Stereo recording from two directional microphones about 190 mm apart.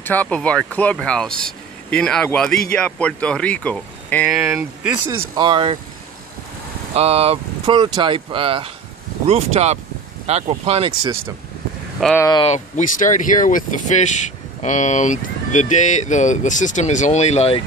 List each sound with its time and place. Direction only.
0.0 s speech: 10° left (ahead or behind)
4.3 s speech: 5° right (ahead or behind)
5.3 s speech: 25° right (ahead or behind)
7.0 s speech: 30° right (ahead or behind)
12.2 s speech: 20° left (ahead or behind)
12.4 s speech: 40° left (ahead or behind)